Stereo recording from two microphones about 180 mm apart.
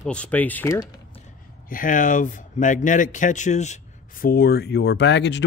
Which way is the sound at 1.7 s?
50° left (ahead or behind).